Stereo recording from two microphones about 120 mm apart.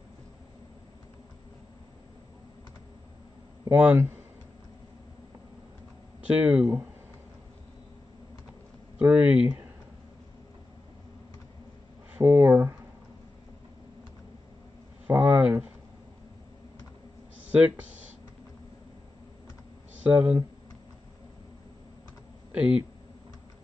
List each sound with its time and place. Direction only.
3.7 s speech: 15° right (ahead or behind)
6.2 s speech: 10° right (ahead or behind)
8.9 s speech: 10° right (ahead or behind)
12.1 s speech: 15° right (ahead or behind)
15.0 s speech: 15° right (ahead or behind)
17.5 s speech: 10° right (ahead or behind)
20.0 s speech: 10° right (ahead or behind)
22.5 s speech: 10° right (ahead or behind)